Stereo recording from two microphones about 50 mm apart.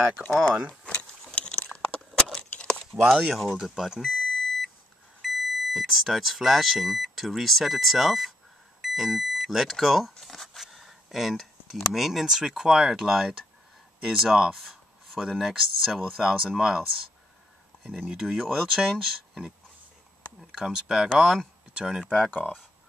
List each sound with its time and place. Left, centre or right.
1.4 s a sound: left
3.1 s speech: centre
4.0 s beep: centre
5.2 s speech: centre
14.5 s writing: centre
15.2 s speech: centre
18.2 s speech: centre
22.3 s speech: left